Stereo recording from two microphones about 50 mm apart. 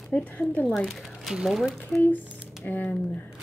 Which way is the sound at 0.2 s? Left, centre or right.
Left.